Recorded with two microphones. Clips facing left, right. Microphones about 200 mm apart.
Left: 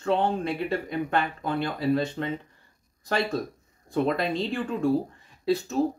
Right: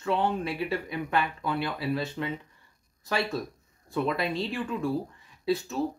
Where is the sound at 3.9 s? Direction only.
40° left (ahead or behind).